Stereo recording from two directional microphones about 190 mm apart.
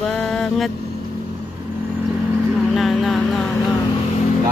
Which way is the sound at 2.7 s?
Centre (ahead or behind).